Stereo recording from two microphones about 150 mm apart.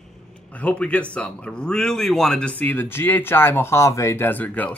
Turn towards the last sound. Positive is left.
turn(degrees=10)  # may be behind; listen again after turning